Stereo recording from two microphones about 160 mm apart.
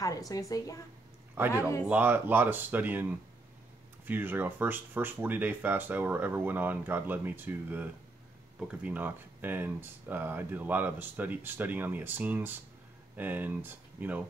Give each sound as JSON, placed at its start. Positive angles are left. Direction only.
{"t": 0.0, "sound": "a woman's voice", "side_deg": 20}
{"t": 1.9, "sound": "speech", "side_deg": -10}